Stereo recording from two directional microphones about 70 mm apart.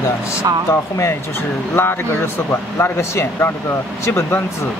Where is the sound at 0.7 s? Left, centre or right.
Left.